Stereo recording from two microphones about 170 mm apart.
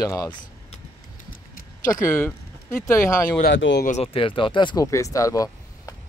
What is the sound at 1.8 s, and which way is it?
Speech, 20° left (ahead or behind).